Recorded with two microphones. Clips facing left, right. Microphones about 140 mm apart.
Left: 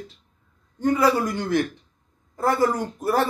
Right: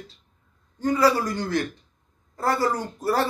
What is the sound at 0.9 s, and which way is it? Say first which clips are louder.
Speech: right 1 dB; 20° left (ahead or behind).